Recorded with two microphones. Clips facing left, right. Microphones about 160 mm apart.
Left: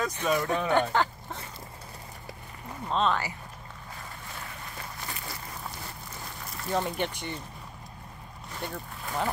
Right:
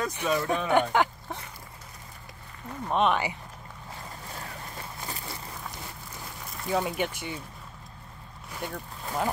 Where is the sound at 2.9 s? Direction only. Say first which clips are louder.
Right 2 dB; 15° right (ahead or behind).